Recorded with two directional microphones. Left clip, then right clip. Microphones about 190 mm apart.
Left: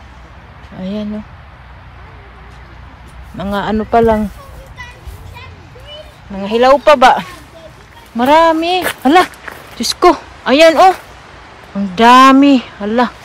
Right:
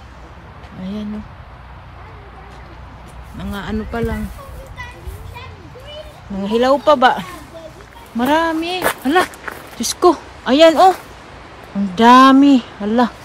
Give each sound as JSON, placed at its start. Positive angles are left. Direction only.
{"t": 3.3, "sound": "speech", "side_deg": -5}
{"t": 4.7, "sound": "children playing", "side_deg": -50}
{"t": 6.3, "sound": "speech", "side_deg": -15}